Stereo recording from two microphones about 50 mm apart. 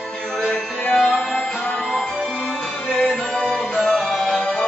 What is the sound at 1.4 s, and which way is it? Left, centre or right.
Music, left.